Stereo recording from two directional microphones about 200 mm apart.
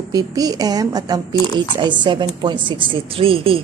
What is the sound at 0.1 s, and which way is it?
A woman's voice, 20° right (ahead or behind).